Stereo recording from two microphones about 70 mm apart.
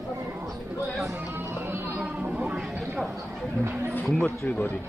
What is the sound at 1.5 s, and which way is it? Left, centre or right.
Music, right.